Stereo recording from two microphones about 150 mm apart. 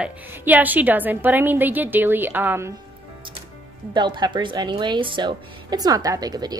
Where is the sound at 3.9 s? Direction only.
30° right (ahead or behind).